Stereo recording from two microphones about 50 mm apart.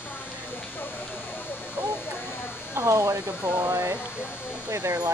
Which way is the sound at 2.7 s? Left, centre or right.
Right.